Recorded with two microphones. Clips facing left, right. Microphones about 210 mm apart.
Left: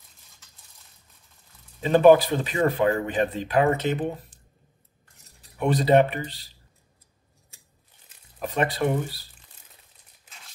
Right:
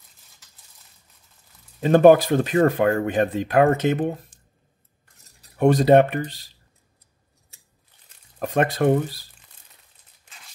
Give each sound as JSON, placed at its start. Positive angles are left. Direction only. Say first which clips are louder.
{"t": 1.8, "sound": "speech", "louder": "right 2 dB", "side_deg": -50}
{"t": 5.4, "sound": "speech", "louder": "right 6 dB", "side_deg": -45}
{"t": 8.4, "sound": "speech", "louder": "right 4 dB", "side_deg": -45}